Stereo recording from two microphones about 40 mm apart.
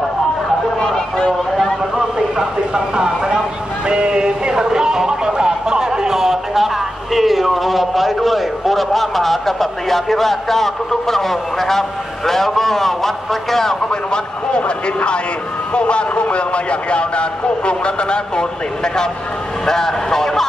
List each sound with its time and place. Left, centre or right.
0.7 s a sound: centre
2.1 s speech: centre
3.9 s a sound: right
7.2 s a man's voice: centre
13.8 s a man's voice: left
15.7 s a man's voice: left
19.6 s a man's voice: centre